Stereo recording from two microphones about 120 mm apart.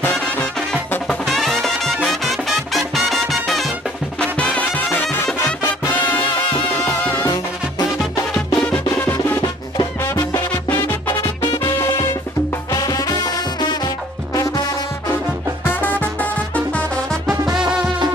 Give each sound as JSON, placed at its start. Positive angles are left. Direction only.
{"t": 0.0, "sound": "music", "side_deg": 10}
{"t": 6.8, "sound": "music", "side_deg": 15}
{"t": 8.6, "sound": "music", "side_deg": 20}
{"t": 11.6, "sound": "music", "side_deg": 20}
{"t": 15.6, "sound": "music", "side_deg": 15}
{"t": 17.6, "sound": "music", "side_deg": -5}